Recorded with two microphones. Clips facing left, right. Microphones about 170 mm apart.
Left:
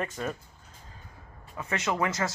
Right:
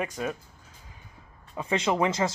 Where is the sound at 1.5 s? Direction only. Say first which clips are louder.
Right 4 dB; 15° right (ahead or behind).